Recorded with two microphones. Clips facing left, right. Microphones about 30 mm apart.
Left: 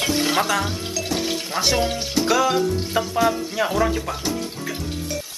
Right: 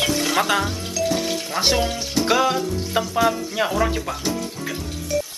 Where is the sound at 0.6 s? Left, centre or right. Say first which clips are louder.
Right 2 dB; centre.